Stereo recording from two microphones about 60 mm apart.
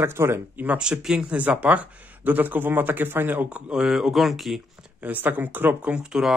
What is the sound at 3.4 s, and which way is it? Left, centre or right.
Speech, centre.